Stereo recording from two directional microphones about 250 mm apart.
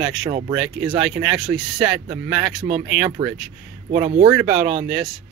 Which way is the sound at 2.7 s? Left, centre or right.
Centre.